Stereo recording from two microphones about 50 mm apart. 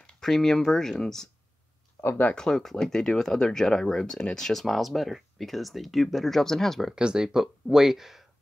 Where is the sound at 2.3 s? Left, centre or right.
Centre.